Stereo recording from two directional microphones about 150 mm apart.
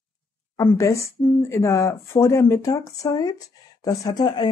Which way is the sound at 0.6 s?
20° left (ahead or behind).